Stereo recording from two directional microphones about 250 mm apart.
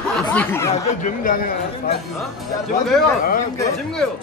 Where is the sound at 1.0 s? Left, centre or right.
Left.